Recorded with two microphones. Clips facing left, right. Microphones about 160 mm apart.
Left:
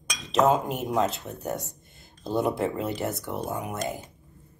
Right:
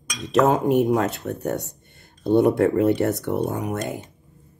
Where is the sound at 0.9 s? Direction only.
70° right (ahead or behind).